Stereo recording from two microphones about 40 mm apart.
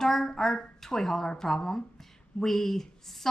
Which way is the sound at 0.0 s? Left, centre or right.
Centre.